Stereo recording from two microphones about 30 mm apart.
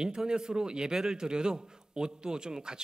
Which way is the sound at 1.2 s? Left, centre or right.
Right.